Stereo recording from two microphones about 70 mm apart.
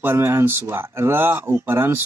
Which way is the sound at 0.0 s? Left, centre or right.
Right.